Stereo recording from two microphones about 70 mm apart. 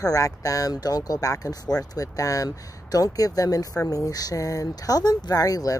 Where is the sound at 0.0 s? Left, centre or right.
Left.